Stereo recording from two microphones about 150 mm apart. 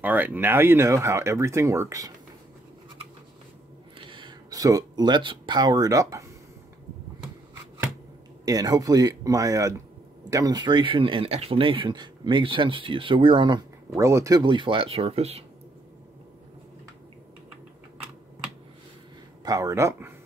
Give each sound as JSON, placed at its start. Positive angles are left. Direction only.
{"t": 0.0, "sound": "speech", "side_deg": -10}
{"t": 4.0, "sound": "speech", "side_deg": -35}
{"t": 8.5, "sound": "speech", "side_deg": -25}
{"t": 14.4, "sound": "speech", "side_deg": -35}
{"t": 19.4, "sound": "speech", "side_deg": -20}